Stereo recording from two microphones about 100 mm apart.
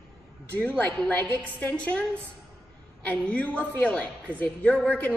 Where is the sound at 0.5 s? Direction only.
15° left (ahead or behind).